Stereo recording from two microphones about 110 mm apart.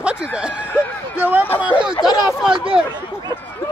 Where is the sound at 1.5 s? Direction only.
15° left (ahead or behind).